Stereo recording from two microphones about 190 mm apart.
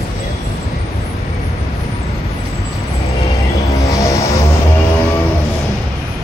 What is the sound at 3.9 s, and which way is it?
Music, 15° left (ahead or behind).